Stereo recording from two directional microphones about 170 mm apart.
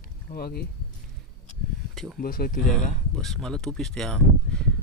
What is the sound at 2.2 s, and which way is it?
Speech, 60° left (ahead or behind).